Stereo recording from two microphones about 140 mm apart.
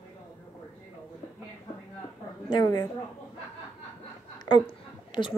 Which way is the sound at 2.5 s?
35° left (ahead or behind).